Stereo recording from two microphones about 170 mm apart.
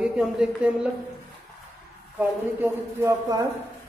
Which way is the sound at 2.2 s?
15° right (ahead or behind).